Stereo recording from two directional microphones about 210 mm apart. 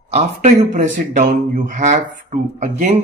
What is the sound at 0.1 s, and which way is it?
Speech, 35° right (ahead or behind).